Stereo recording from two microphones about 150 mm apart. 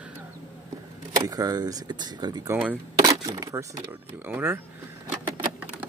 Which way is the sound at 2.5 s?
10° right (ahead or behind).